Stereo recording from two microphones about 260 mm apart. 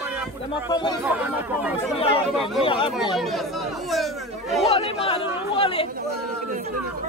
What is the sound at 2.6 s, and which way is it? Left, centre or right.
Speech, centre.